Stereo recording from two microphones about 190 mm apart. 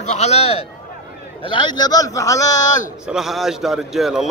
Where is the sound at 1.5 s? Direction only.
25° left (ahead or behind).